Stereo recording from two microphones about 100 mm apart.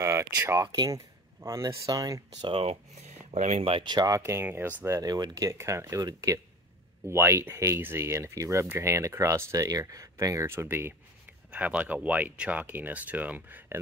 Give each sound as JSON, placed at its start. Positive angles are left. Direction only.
{"t": 0.0, "sound": "speech", "side_deg": -30}
{"t": 2.4, "sound": "speech", "side_deg": -80}
{"t": 3.8, "sound": "speech", "side_deg": -40}
{"t": 5.0, "sound": "speech", "side_deg": -40}
{"t": 11.5, "sound": "speech", "side_deg": -15}